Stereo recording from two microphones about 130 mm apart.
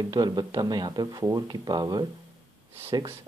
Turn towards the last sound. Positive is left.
turn(degrees=-35)  # may be behind; listen again after turning